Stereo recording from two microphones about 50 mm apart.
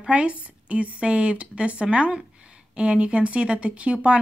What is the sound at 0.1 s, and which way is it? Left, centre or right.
Speech, right.